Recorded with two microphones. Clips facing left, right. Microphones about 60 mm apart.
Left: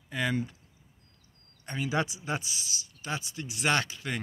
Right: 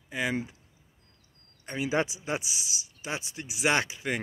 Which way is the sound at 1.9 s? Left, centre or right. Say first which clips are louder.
Right 2 dB; right.